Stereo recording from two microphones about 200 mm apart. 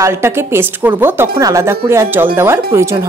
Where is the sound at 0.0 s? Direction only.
15° right (ahead or behind).